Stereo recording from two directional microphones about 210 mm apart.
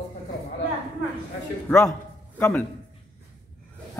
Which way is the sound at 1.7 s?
5° left (ahead or behind).